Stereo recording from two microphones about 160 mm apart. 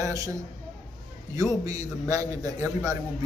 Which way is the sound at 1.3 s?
20° right (ahead or behind).